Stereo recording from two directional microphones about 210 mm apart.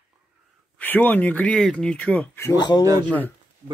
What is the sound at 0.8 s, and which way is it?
Speech, 10° left (ahead or behind).